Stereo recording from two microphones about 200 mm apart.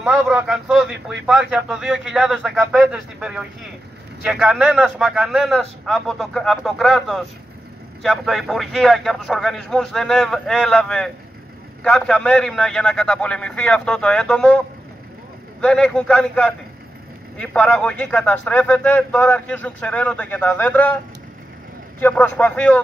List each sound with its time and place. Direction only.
0.0 s speech: 5° right (ahead or behind)
15.6 s speech: 5° left (ahead or behind)
22.0 s speech: 10° left (ahead or behind)